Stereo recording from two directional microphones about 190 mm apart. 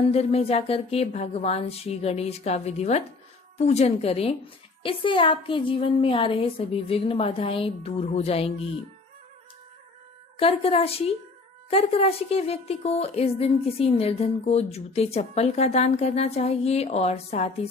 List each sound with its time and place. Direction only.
0.1 s a woman's voice: 30° left (ahead or behind)
10.3 s a woman's voice: 30° left (ahead or behind)